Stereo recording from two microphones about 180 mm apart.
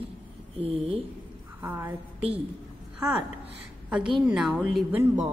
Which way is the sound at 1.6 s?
10° right (ahead or behind).